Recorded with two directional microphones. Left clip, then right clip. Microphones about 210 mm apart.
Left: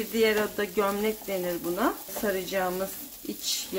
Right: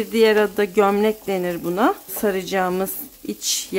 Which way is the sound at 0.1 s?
55° right (ahead or behind).